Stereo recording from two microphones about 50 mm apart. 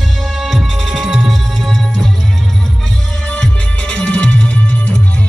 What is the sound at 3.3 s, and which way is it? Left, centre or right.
Music, left.